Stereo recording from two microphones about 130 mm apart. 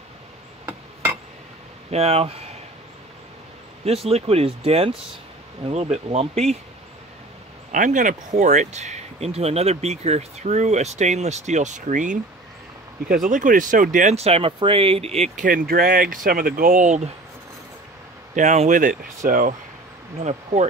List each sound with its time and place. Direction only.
1.9 s speech: 55° right (ahead or behind)
3.8 s speech: 50° right (ahead or behind)
7.7 s speech: 85° right
14.1 s speech: 50° right (ahead or behind)
18.3 s speech: 70° right (ahead or behind); by 19.5 s 90° right